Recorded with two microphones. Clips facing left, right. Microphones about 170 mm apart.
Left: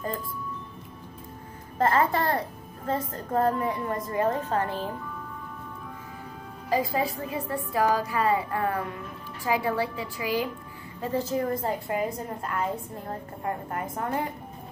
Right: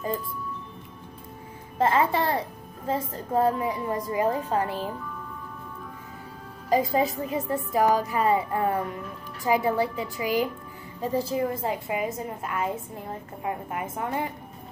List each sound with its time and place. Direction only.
1.8 s a woman's voice: 10° right (ahead or behind)
6.7 s a woman's voice: 25° right (ahead or behind); by 14.2 s 5° right (ahead or behind)